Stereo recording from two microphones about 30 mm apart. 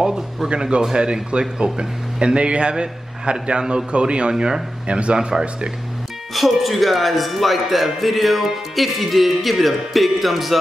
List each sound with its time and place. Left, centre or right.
0.0 s a sound: centre
0.9 s a man's voice: right
4.3 s speech: right
4.8 s a man's voice: right
6.3 s speech: centre